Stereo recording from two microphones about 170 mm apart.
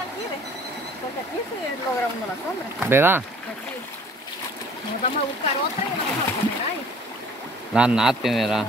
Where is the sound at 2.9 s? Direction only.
10° right (ahead or behind).